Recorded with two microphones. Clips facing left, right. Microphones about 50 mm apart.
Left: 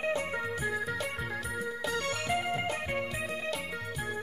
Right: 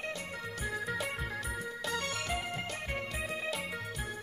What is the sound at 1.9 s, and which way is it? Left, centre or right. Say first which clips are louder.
Music: left 3 dB; centre.